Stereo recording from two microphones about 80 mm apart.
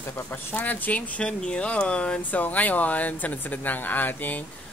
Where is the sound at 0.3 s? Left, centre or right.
Left.